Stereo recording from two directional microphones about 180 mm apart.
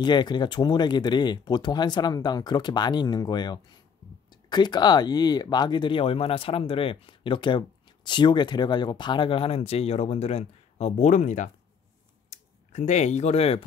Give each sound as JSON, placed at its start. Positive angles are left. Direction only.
{"t": 0.0, "sound": "speech", "side_deg": 25}